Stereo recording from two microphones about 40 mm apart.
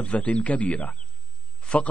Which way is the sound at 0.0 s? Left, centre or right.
Left.